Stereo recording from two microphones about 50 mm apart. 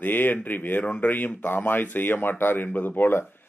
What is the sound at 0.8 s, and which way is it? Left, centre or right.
Speech, left.